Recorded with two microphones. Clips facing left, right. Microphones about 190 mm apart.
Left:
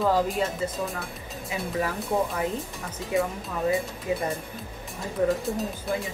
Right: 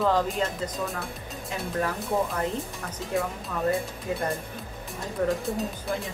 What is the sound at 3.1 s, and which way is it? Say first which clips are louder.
Speech: left 3 dB; centre (ahead or behind).